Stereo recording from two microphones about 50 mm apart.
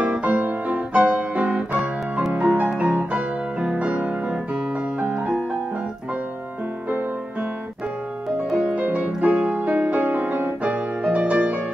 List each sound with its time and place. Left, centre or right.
0.0 s piano: right
2.3 s music: right
8.5 s piano: centre
8.8 s keyboard: right
9.4 s music: right